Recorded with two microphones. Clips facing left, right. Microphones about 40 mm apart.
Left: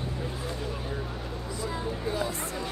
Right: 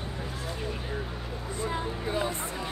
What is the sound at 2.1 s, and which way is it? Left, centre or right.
Music, right.